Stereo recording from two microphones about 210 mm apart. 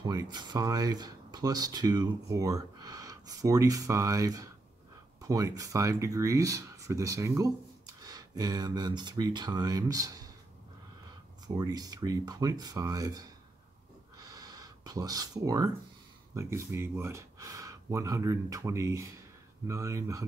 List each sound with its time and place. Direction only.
0.0 s speech: 20° right (ahead or behind)
11.4 s speech: 20° right (ahead or behind)
14.1 s a sound: 15° right (ahead or behind)
16.3 s speech: 15° right (ahead or behind)